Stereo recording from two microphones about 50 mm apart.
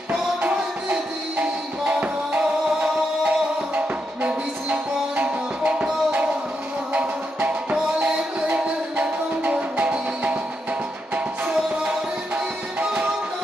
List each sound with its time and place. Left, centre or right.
0.1 s music: right
6.9 s music: right
11.7 s music: centre